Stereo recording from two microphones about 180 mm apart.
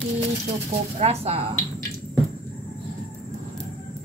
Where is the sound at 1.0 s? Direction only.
35° right (ahead or behind).